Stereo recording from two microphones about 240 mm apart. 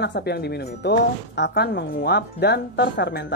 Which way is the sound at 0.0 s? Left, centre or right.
Left.